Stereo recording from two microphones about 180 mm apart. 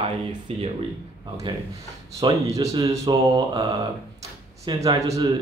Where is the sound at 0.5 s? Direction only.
30° right (ahead or behind).